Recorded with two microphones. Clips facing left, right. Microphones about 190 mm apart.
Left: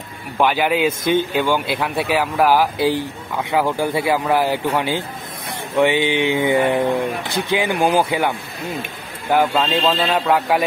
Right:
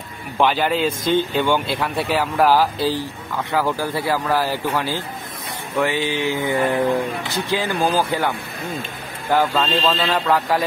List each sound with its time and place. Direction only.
0.4 s speech: 10° left (ahead or behind)
5.8 s mantra: 20° left (ahead or behind)
7.3 s speech: 15° left (ahead or behind)
9.3 s speech: 10° left (ahead or behind)
9.9 s mantra: 20° left (ahead or behind)
10.2 s speech: 15° left (ahead or behind)